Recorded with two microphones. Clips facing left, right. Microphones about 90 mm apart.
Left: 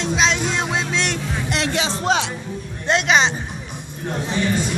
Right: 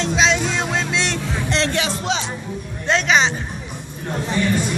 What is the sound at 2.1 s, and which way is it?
Speech, 45° left (ahead or behind).